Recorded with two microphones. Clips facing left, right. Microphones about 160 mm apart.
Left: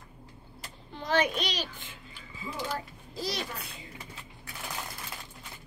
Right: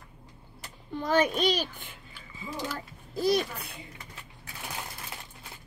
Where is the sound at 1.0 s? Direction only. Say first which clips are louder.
Right 3 dB; 45° right (ahead or behind).